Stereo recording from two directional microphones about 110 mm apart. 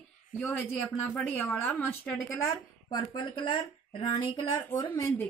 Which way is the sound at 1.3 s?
15° left (ahead or behind).